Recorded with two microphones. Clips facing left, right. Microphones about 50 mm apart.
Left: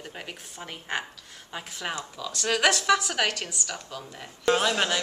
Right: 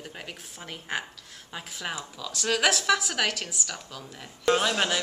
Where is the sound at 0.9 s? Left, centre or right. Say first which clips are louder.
Left 1 dB; centre.